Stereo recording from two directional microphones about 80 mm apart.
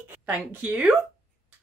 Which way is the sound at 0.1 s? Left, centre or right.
Centre.